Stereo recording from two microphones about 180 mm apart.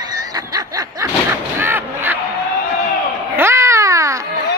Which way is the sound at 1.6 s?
10° right (ahead or behind).